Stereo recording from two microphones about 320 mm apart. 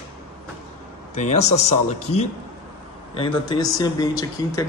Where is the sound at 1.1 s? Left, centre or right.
Left.